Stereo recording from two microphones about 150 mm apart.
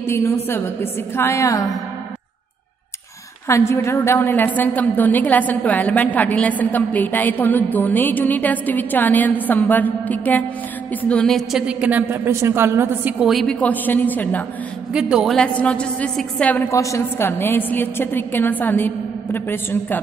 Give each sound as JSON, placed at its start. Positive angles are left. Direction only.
{"t": 0.0, "sound": "a woman's voice", "side_deg": 15}
{"t": 3.4, "sound": "a woman's voice", "side_deg": 20}
{"t": 13.2, "sound": "a woman's voice", "side_deg": 0}
{"t": 14.9, "sound": "a woman's voice", "side_deg": -5}